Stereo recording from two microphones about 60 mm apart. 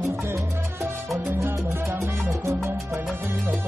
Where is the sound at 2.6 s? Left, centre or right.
Right.